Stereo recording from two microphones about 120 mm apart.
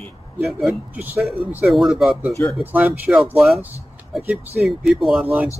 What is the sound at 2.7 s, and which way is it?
Speech, 15° right (ahead or behind).